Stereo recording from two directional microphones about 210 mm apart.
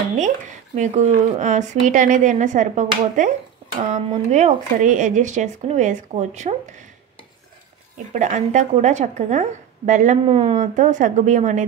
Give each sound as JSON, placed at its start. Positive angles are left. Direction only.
{"t": 0.7, "sound": "a woman's voice", "side_deg": -35}
{"t": 8.1, "sound": "a woman's voice", "side_deg": -35}